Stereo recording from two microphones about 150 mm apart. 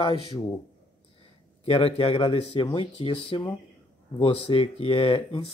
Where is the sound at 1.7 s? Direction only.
40° left (ahead or behind).